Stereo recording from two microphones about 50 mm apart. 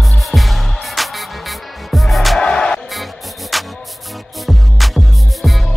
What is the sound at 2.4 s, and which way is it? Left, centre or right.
Music, centre.